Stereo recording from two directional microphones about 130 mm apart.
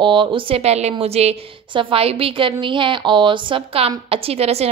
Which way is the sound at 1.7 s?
40° right (ahead or behind).